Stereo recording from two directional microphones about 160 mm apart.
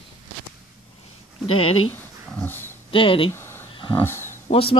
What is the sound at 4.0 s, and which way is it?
Speech, 15° left (ahead or behind).